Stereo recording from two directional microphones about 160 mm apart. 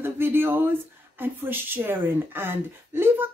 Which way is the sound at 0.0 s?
15° right (ahead or behind).